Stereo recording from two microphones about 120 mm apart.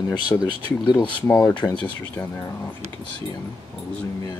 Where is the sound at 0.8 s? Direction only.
40° left (ahead or behind).